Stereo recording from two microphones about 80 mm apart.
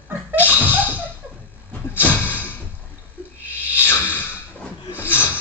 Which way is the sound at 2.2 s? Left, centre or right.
Left.